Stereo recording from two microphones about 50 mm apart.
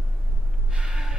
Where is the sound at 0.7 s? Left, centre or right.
Centre.